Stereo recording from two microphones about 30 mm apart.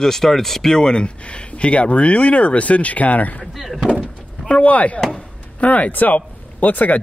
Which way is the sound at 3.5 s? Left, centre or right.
Centre.